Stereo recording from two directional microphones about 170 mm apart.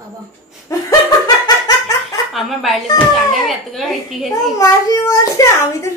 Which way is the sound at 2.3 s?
Centre (ahead or behind).